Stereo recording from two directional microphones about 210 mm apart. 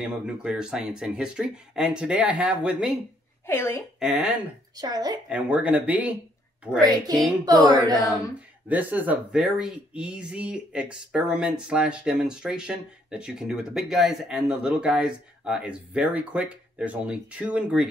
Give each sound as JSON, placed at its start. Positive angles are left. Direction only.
{"t": 0.0, "sound": "speech", "side_deg": -5}
{"t": 3.4, "sound": "a woman's voice", "side_deg": 10}
{"t": 4.0, "sound": "speech", "side_deg": -5}
{"t": 4.7, "sound": "speech", "side_deg": -20}
{"t": 5.3, "sound": "speech", "side_deg": -5}
{"t": 7.4, "sound": "speech", "side_deg": -20}